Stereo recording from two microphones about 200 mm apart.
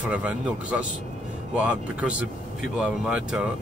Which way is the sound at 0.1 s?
5° right (ahead or behind).